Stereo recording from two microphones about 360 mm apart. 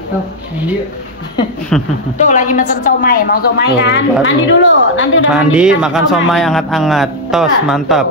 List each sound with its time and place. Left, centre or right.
1.7 s speech: centre
2.1 s a woman's voice: left
5.3 s speech: centre